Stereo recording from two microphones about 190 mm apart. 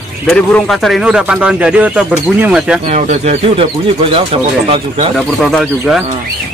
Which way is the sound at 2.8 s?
35° right (ahead or behind).